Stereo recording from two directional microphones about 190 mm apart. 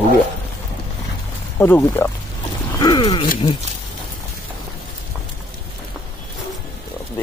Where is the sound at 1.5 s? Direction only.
10° left (ahead or behind).